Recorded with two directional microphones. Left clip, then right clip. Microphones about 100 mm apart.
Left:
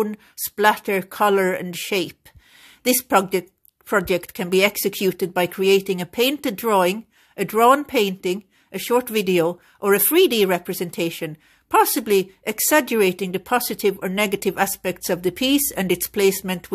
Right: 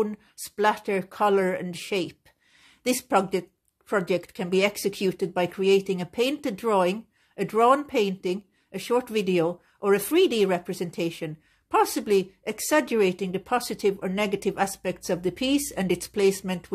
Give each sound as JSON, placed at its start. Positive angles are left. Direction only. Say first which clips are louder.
{"t": 0.0, "sound": "speech", "louder": "left 4 dB", "side_deg": 25}